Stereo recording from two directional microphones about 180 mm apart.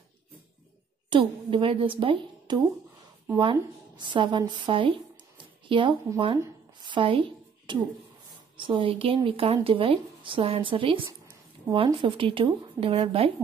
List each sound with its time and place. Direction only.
1.1 s a woman's voice: 30° right (ahead or behind)